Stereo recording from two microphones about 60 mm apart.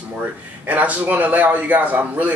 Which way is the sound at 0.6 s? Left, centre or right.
Right.